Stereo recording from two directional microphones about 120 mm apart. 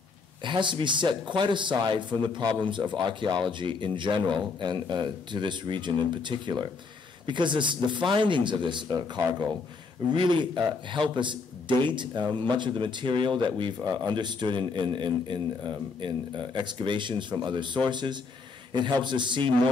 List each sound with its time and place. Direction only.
0.4 s speech: 40° right (ahead or behind)